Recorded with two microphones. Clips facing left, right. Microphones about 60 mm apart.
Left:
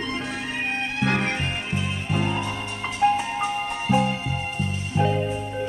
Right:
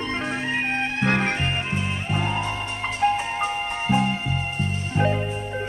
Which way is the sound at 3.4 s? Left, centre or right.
Right.